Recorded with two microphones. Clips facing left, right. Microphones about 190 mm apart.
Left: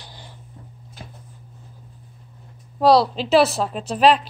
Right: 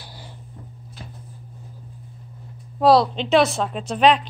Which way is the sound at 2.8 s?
Centre (ahead or behind).